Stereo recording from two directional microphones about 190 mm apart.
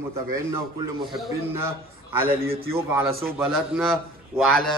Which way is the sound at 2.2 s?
50° right (ahead or behind).